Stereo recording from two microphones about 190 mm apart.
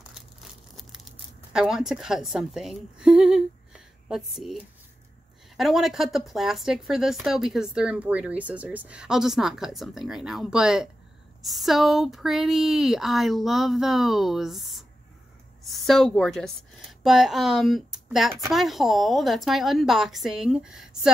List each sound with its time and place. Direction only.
1.5 s a woman's voice: 5° right (ahead or behind)
5.6 s speech: centre (ahead or behind)